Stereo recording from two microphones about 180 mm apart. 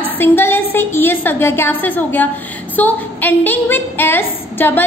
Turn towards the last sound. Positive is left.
turn(degrees=10)  # may be behind; listen again after turning